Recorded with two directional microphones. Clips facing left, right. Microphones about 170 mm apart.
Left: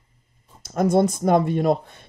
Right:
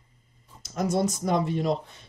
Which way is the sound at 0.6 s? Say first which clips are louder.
Left 7 dB; 55° left (ahead or behind).